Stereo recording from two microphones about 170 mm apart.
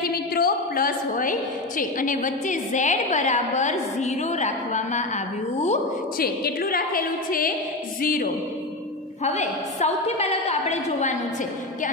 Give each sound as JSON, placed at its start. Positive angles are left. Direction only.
{"t": 0.0, "sound": "a sound", "side_deg": 60}
{"t": 1.8, "sound": "a woman's voice", "side_deg": 50}
{"t": 6.1, "sound": "a woman's voice", "side_deg": 60}
{"t": 9.2, "sound": "a woman's voice", "side_deg": 40}